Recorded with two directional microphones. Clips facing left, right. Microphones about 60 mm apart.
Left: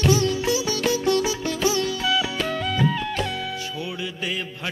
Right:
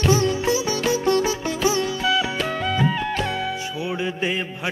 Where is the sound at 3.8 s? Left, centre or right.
Right.